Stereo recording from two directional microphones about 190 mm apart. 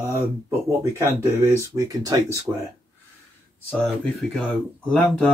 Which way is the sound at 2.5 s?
5° right (ahead or behind).